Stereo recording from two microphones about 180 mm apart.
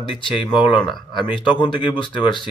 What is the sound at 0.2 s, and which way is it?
Speech, 25° left (ahead or behind).